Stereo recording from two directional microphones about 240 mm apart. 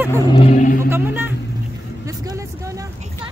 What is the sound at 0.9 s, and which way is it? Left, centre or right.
Speech, centre.